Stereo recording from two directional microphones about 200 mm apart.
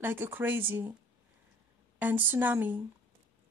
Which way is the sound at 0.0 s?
10° right (ahead or behind).